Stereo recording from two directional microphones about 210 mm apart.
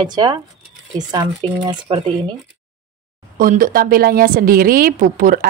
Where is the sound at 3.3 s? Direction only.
40° right (ahead or behind).